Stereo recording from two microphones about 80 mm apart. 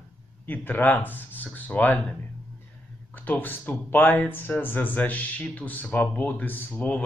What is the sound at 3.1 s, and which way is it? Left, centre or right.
A man's voice, left.